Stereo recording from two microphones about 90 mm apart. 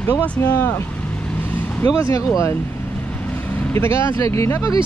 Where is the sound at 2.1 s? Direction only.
40° left (ahead or behind).